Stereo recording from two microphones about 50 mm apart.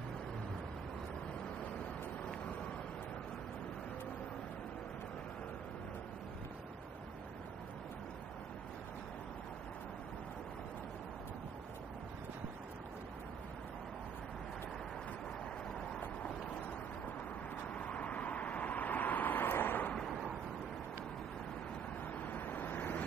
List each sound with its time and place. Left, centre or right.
17.7 s vehicle: left
22.2 s vehicle: left